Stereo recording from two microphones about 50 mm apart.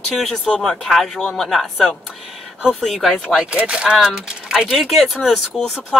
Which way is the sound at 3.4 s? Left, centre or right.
Right.